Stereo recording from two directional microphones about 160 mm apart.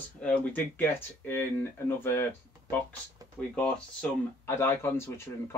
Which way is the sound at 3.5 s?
10° left (ahead or behind).